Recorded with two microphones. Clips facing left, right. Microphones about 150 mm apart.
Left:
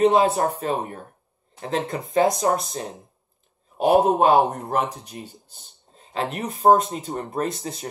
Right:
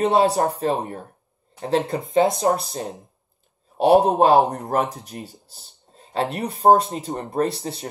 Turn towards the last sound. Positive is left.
turn(degrees=-30)  # may be behind; listen again after turning